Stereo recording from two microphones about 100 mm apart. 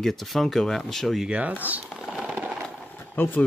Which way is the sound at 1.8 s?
Centre (ahead or behind).